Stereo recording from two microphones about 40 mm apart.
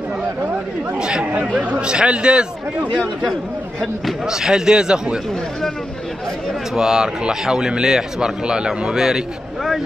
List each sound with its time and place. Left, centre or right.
0.9 s a man's voice: right
4.3 s a man's voice: centre
6.7 s a man's voice: centre